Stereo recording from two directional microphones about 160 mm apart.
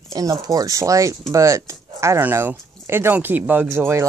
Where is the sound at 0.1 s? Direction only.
20° right (ahead or behind).